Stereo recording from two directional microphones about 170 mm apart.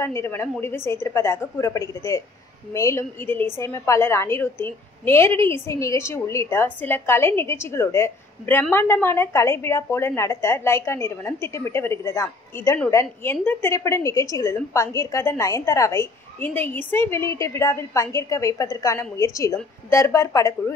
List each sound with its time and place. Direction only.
0.0 s a woman's voice: 15° left (ahead or behind)